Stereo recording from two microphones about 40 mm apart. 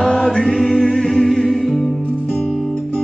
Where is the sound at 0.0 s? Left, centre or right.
Centre.